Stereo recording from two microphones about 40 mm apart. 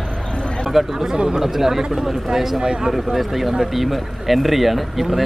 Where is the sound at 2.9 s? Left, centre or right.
Centre.